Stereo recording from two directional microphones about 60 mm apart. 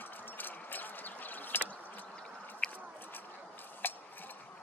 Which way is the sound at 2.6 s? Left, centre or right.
Centre.